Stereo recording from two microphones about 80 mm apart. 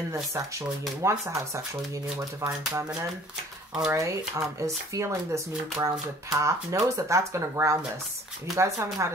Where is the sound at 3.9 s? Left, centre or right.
Right.